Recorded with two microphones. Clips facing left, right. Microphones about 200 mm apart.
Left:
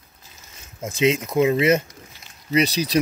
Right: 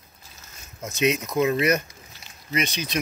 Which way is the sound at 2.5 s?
35° left (ahead or behind).